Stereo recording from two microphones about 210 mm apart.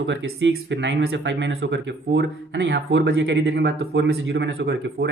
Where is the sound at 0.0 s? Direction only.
60° right (ahead or behind).